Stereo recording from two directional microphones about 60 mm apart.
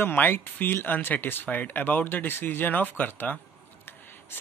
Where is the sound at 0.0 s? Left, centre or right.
Left.